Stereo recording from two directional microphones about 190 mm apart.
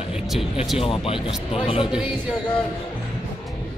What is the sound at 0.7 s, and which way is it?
Speech, 30° left (ahead or behind).